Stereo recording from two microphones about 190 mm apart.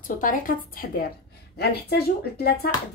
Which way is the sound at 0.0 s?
45° left (ahead or behind).